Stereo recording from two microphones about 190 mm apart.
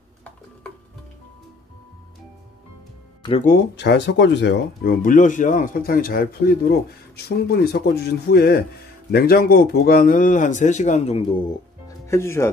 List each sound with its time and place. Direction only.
3.2 s music: 30° left (ahead or behind)
3.4 s speech: 60° left (ahead or behind); by 11.3 s 30° left (ahead or behind)
12.1 s speech: 15° left (ahead or behind)